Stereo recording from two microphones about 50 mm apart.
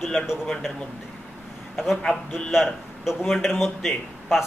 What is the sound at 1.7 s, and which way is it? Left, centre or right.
Speech, centre.